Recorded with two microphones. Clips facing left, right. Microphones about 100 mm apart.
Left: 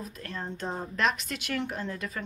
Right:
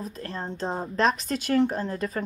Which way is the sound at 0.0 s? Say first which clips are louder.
Right 4 dB; 35° right (ahead or behind).